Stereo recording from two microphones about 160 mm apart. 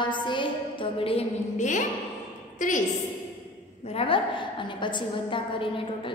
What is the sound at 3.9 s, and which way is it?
A woman's voice, 35° left (ahead or behind).